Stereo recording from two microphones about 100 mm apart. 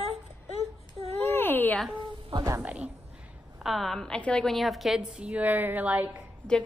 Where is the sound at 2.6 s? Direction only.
15° right (ahead or behind).